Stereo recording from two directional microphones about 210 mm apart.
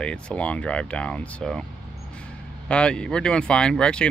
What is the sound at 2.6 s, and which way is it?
Speech, 5° left (ahead or behind).